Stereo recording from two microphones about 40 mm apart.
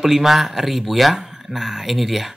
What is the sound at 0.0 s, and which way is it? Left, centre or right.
Speech, centre.